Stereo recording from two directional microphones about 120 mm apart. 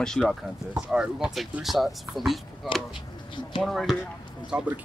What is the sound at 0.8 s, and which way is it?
A man's voice, 10° right (ahead or behind).